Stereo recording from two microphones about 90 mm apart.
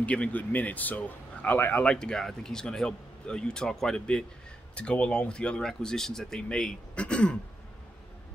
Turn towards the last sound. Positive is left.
turn(degrees=10)  # may be behind; listen again after turning